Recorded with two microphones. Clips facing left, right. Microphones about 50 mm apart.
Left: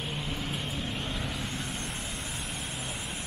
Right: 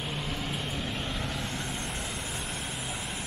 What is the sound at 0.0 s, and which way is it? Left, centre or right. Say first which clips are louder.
Vehicle: right 1 dB; centre.